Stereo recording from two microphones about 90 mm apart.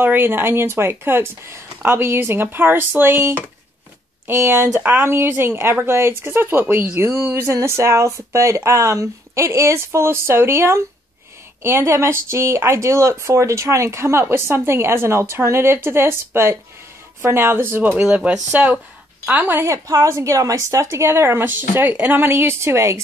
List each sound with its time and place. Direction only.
0.0 s speech: 25° right (ahead or behind)
18.0 s speech: 10° right (ahead or behind)
19.6 s speech: 35° right (ahead or behind)